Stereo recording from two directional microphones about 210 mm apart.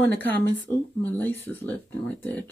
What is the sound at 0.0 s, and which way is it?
Speech, 10° left (ahead or behind).